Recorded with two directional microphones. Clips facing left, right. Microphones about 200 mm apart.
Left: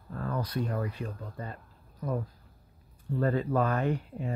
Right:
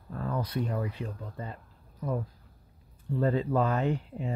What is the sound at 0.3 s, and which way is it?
Speech, 25° right (ahead or behind).